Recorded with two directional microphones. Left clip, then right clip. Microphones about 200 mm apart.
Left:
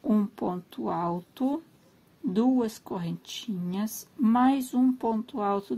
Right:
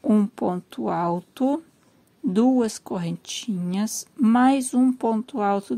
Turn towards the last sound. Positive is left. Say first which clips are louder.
# right 5 dB
turn(degrees=-30)  # may be behind; listen again after turning